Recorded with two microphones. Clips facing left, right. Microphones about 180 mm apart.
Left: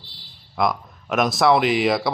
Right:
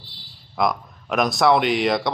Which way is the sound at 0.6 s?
Centre (ahead or behind).